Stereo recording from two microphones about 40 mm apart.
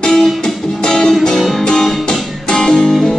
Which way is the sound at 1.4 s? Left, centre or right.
Centre.